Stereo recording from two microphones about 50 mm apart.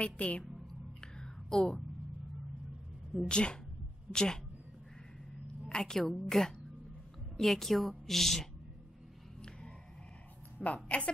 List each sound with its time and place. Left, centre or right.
0.0 s a woman's voice: left
1.0 s a sound: centre
3.3 s a woman's voice: centre
5.7 s a woman's voice: centre
10.6 s a woman's voice: left